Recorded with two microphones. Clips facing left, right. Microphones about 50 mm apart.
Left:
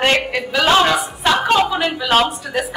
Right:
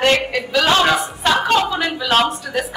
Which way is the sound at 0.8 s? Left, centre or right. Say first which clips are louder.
Even; centre.